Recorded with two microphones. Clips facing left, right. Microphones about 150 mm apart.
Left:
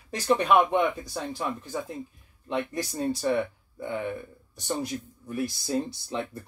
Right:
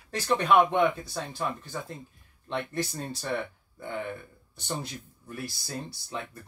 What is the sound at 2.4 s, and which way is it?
Speech, 10° left (ahead or behind).